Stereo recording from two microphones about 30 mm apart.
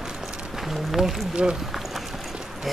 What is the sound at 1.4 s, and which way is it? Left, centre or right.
Speech, right.